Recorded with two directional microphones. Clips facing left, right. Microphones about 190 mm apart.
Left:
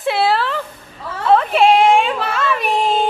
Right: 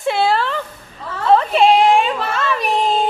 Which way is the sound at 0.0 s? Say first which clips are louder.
Even; centre (ahead or behind).